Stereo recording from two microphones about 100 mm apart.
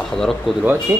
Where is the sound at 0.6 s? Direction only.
20° right (ahead or behind).